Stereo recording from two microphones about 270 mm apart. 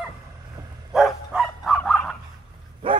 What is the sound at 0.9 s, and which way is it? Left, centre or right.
Bow-wow, centre.